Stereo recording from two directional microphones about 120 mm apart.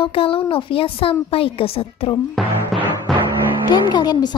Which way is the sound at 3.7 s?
35° left (ahead or behind).